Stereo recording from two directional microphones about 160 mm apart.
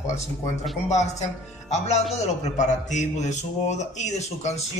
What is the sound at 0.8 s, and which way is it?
Speech, 45° left (ahead or behind).